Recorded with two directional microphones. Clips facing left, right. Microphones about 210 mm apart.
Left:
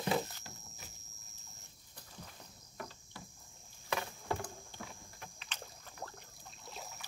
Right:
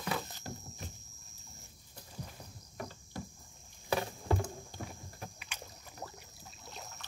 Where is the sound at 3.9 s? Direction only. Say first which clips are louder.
Right 5 dB; 30° right (ahead or behind).